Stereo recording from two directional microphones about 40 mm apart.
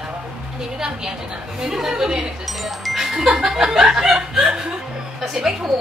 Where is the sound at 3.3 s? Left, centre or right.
Centre.